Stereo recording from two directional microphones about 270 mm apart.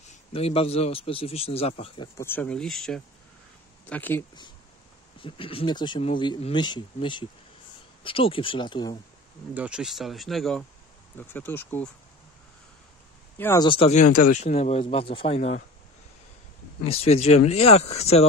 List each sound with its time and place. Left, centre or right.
0.1 s speech: left
2.1 s speech: centre
5.2 s speech: centre
9.5 s speech: centre
13.4 s speech: centre
16.8 s speech: left